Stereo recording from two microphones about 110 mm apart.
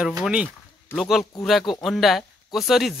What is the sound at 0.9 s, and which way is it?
Speech, 20° left (ahead or behind).